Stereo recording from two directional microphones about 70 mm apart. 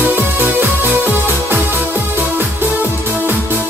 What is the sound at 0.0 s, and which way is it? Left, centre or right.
Music, right.